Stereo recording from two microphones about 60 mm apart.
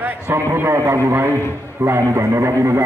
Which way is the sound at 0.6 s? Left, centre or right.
Right.